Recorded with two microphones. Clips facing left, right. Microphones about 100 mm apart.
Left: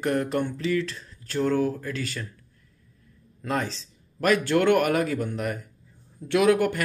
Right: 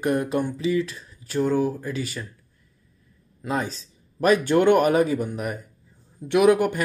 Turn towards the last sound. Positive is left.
turn(degrees=-20)  # may be behind; listen again after turning